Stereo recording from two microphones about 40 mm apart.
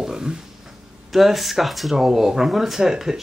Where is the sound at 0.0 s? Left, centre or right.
Centre.